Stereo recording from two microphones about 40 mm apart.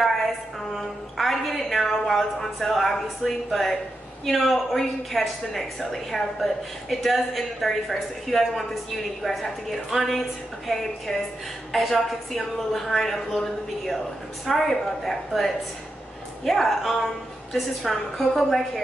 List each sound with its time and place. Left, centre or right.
0.7 s a woman's voice: centre
16.4 s a woman's voice: centre